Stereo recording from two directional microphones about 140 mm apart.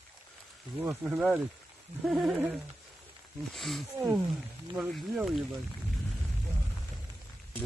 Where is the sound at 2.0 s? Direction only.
Centre (ahead or behind).